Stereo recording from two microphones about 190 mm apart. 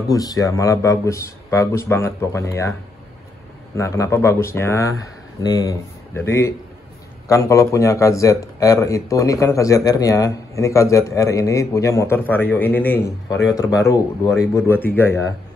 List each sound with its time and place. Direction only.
0.1 s a man's voice: 20° left (ahead or behind)
3.7 s a man's voice: 15° left (ahead or behind)